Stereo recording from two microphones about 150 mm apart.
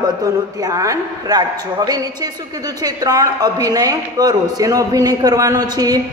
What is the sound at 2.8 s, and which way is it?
A woman's voice, 25° right (ahead or behind).